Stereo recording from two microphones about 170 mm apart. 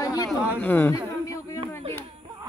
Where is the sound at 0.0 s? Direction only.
20° left (ahead or behind).